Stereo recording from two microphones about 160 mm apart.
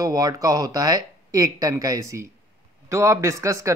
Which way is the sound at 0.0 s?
20° right (ahead or behind).